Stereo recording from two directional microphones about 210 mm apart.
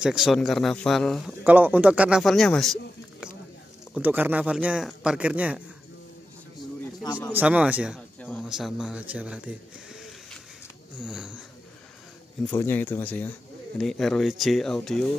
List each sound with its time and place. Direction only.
0.0 s a man's voice: centre (ahead or behind)
3.9 s a man's voice: 10° right (ahead or behind)
7.0 s speech: 15° left (ahead or behind)
7.3 s a man's voice: 5° right (ahead or behind)
8.2 s a man's voice: 5° left (ahead or behind)
12.4 s a man's voice: 10° left (ahead or behind)